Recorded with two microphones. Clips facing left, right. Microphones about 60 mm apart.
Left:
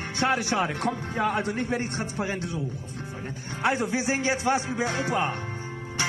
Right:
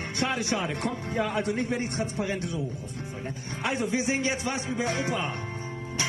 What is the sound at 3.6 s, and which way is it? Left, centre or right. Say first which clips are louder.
A man's voice: left 3 dB; left.